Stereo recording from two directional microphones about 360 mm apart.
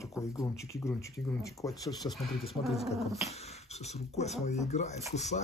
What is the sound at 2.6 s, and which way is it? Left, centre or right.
Speech, centre.